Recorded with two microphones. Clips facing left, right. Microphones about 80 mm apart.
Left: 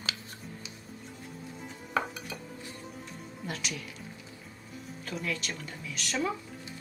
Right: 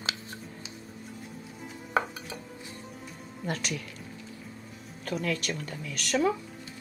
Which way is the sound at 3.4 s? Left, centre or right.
Right.